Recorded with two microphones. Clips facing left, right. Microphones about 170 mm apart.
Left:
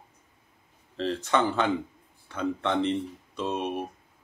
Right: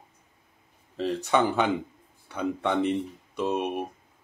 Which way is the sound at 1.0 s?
15° right (ahead or behind).